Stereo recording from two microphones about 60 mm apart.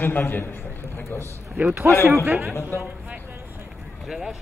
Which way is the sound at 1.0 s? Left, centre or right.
Left.